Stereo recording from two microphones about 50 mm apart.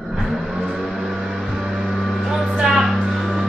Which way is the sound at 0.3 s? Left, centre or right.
Centre.